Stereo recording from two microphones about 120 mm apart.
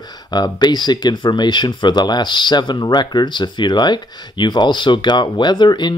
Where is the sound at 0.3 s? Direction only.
35° left (ahead or behind).